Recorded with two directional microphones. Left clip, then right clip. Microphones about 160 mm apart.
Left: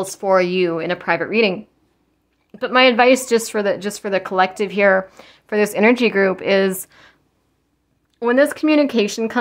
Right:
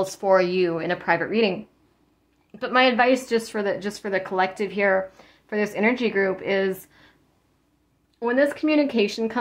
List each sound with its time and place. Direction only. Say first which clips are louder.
0.0 s a woman's voice: left 3 dB; 25° left (ahead or behind); by 7.2 s 45° left (ahead or behind)
8.2 s speech: left 6 dB; 40° left (ahead or behind)